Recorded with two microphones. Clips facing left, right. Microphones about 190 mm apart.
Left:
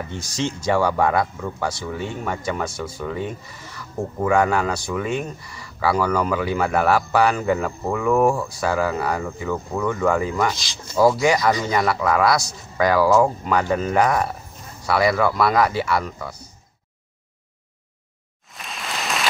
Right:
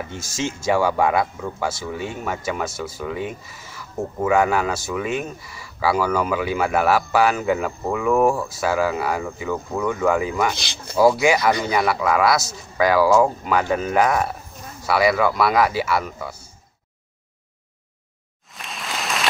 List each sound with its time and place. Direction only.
0.7 s speech: 5° right (ahead or behind)
10.5 s speech: 60° right (ahead or behind)
11.0 s speech: 5° right (ahead or behind)
18.5 s rain: centre (ahead or behind)